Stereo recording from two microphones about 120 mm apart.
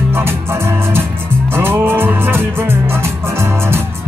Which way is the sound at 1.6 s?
20° right (ahead or behind).